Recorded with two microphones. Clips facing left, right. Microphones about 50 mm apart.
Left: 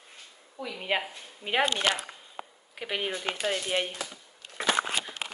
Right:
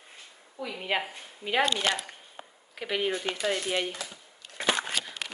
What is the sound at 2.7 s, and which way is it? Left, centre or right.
Speech, centre.